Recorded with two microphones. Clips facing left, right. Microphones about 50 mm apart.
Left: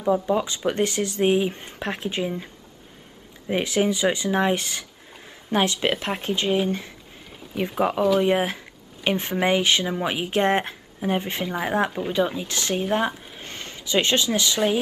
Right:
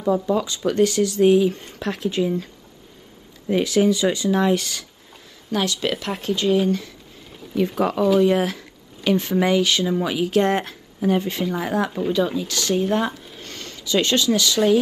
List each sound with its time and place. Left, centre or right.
0.3 s speech: left